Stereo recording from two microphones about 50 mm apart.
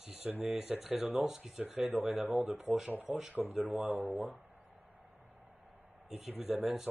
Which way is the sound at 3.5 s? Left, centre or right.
Right.